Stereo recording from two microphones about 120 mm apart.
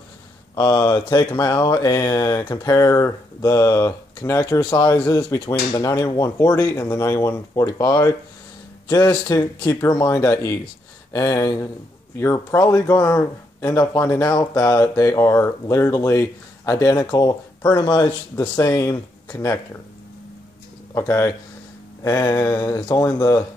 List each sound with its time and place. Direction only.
0.6 s speech: 35° left (ahead or behind)
20.9 s speech: 25° left (ahead or behind)